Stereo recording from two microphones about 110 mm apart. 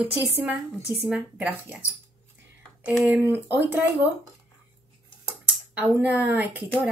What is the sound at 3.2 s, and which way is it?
Speech, 20° right (ahead or behind).